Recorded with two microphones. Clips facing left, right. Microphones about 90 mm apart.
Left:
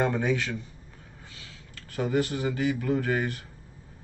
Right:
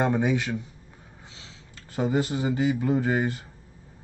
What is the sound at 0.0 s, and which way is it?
Speech, 15° right (ahead or behind).